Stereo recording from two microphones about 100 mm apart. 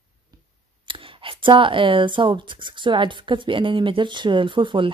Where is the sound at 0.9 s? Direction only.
60° right (ahead or behind).